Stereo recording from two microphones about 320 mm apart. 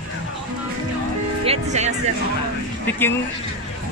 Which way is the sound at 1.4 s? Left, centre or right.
Centre.